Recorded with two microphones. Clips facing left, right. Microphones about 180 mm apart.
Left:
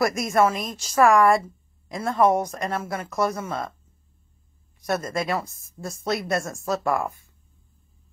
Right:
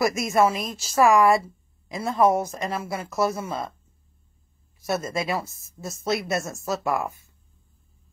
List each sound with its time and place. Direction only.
0.0 s speech: centre (ahead or behind)
4.7 s speech: 5° right (ahead or behind)